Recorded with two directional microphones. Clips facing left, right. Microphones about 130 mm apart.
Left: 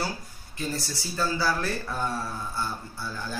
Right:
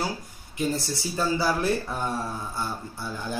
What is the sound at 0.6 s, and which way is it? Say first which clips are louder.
Speech: right 5 dB; 20° right (ahead or behind).